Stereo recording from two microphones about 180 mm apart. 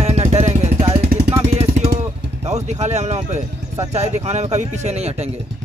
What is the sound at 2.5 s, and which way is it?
Vehicle, 40° right (ahead or behind).